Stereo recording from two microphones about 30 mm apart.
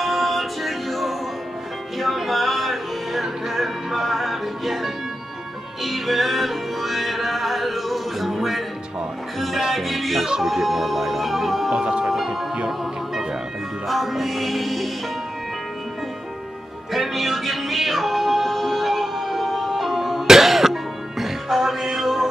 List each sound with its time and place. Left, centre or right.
0.0 s music: centre
9.8 s music: centre
11.7 s music: right
13.8 s music: centre
16.9 s music: centre